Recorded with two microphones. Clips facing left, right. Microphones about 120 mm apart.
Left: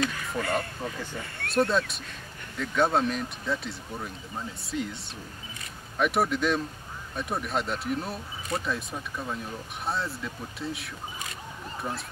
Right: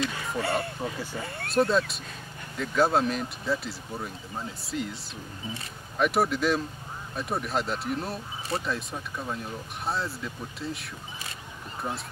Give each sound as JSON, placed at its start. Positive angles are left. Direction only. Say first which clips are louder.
{"t": 0.1, "sound": "speech", "louder": "right 1 dB", "side_deg": -30}
{"t": 1.5, "sound": "speech", "louder": "right 1 dB", "side_deg": 0}
{"t": 5.9, "sound": "speech", "louder": "right 1 dB", "side_deg": 0}